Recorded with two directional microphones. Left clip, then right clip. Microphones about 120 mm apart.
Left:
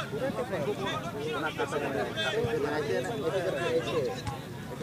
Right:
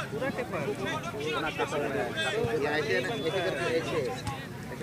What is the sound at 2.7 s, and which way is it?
Speech, 35° right (ahead or behind).